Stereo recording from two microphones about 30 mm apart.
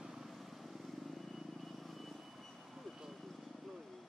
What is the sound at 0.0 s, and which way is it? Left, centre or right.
Vehicle, centre.